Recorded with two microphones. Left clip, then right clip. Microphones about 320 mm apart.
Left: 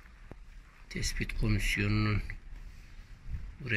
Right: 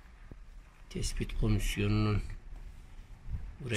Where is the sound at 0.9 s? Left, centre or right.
Centre.